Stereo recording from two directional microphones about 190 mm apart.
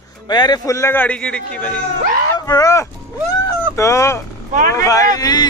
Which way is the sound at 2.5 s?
15° left (ahead or behind).